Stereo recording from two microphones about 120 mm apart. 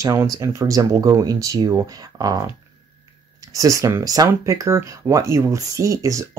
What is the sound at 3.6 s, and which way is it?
Speech, 30° right (ahead or behind).